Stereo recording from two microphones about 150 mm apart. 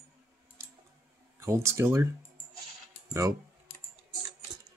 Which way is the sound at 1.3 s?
15° right (ahead or behind).